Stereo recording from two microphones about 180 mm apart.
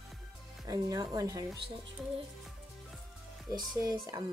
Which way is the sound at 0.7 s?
20° right (ahead or behind).